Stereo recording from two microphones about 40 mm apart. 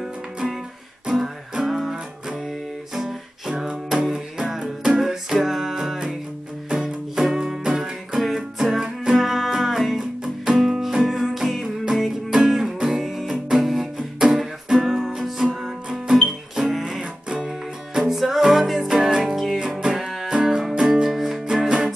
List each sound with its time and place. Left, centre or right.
1.0 s music: centre
7.2 s music: centre
9.2 s music: centre
17.0 s music: right
17.5 s music: centre
20.3 s music: centre